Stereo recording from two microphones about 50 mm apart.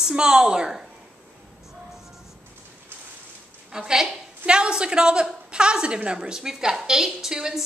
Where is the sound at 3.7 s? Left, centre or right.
Centre.